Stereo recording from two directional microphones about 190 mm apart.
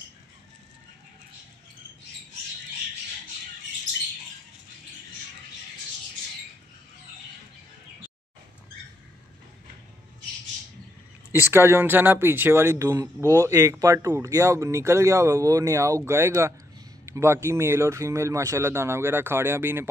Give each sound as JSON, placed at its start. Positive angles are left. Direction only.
{"t": 11.5, "sound": "speech", "side_deg": -10}